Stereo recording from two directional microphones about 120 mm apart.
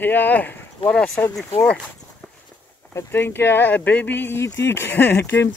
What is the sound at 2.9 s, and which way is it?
Speech, 15° left (ahead or behind).